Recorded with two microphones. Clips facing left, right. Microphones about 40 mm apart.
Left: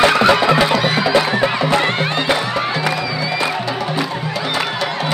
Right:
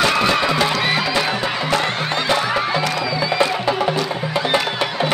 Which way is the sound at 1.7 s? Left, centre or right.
Left.